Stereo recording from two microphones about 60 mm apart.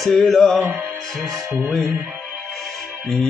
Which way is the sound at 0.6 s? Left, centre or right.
Right.